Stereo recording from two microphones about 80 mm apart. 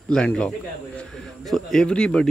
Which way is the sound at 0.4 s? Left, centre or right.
Centre.